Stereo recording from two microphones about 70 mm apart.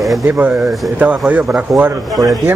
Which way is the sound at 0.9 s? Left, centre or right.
Right.